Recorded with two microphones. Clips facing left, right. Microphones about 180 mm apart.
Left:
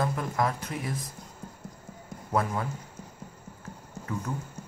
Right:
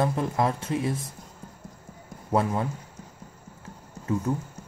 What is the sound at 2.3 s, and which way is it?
Speech, 25° right (ahead or behind).